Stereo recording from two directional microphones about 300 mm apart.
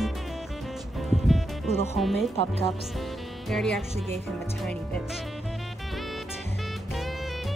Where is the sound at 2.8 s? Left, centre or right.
Centre.